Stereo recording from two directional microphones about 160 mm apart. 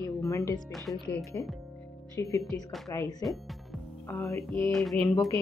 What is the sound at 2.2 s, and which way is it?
Speech, 20° left (ahead or behind).